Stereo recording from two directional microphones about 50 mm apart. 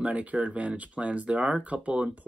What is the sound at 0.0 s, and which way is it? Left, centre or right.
Speech, right.